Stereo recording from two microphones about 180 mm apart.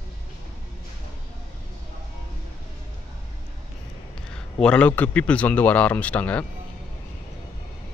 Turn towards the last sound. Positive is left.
turn(degrees=10)  # may be behind; listen again after turning